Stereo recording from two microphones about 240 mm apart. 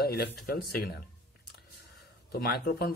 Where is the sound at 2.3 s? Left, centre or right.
Left.